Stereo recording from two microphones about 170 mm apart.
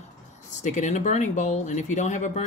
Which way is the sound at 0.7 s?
45° left (ahead or behind).